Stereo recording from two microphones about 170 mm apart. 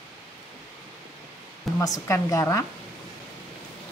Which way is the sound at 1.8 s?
20° left (ahead or behind).